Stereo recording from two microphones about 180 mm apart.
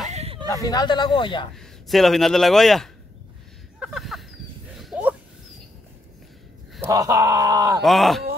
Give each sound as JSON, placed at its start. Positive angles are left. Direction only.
{"t": 0.1, "sound": "a sound", "side_deg": -35}
{"t": 0.5, "sound": "speech", "side_deg": 20}
{"t": 1.5, "sound": "speech", "side_deg": 0}
{"t": 3.8, "sound": "a sound", "side_deg": 0}
{"t": 6.9, "sound": "speech", "side_deg": -20}
{"t": 7.8, "sound": "speech", "side_deg": 0}